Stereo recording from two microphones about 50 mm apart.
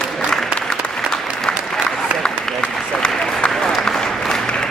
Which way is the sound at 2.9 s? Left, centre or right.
Centre.